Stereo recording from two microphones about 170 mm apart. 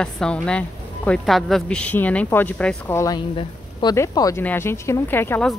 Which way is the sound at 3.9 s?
20° left (ahead or behind).